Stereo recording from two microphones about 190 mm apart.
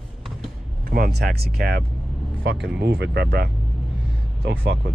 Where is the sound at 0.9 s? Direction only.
55° right (ahead or behind).